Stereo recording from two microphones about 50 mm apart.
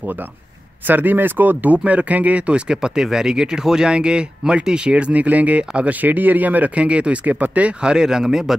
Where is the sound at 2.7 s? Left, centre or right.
Centre.